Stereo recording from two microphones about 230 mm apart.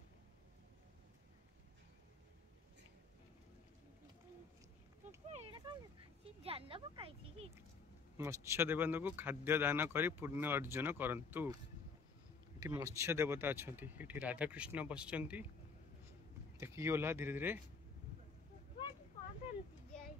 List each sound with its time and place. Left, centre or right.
5.3 s a sound: right
6.4 s speech: right
8.2 s speech: centre
12.5 s speech: centre
16.5 s speech: centre